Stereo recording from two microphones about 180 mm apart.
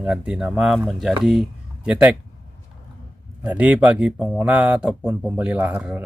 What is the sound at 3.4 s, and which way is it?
Speech, 10° right (ahead or behind).